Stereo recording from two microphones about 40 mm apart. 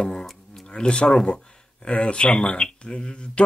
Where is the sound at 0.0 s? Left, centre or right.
Left.